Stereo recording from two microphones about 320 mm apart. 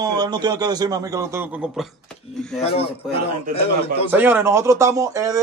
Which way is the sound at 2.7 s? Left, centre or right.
Centre.